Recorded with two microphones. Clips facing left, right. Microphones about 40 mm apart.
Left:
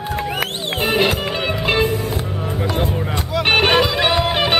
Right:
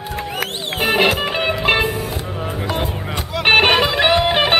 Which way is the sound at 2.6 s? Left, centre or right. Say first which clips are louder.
Left 3 dB; centre.